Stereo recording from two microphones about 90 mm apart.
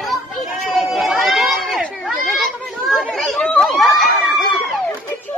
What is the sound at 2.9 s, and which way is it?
Chatter, centre (ahead or behind).